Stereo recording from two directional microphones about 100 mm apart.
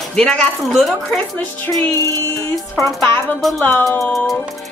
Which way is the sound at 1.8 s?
30° left (ahead or behind).